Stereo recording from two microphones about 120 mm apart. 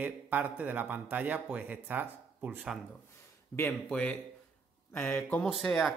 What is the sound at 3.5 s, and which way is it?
Speech, 5° left (ahead or behind).